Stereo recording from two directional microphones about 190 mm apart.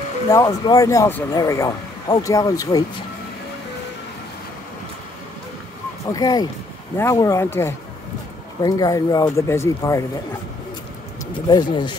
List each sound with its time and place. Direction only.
0.3 s speech: 20° left (ahead or behind)
6.0 s speech: 20° left (ahead or behind)
11.4 s speech: 25° left (ahead or behind)